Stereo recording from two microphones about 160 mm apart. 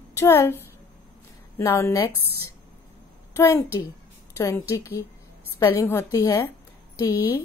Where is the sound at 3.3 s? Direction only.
15° left (ahead or behind).